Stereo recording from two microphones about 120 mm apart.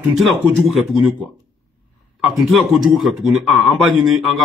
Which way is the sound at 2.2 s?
Centre (ahead or behind).